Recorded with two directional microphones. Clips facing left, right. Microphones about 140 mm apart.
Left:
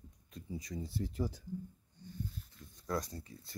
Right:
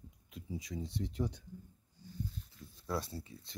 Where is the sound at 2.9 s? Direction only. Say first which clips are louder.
Left 1 dB; 5° right (ahead or behind).